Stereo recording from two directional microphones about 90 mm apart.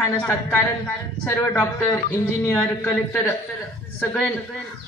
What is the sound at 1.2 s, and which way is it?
Speech, 30° left (ahead or behind).